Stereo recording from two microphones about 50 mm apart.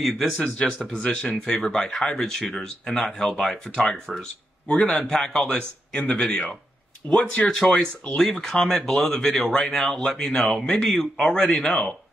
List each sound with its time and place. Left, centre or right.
0.0 s speech: centre
0.4 s speech: centre
5.5 s speech: left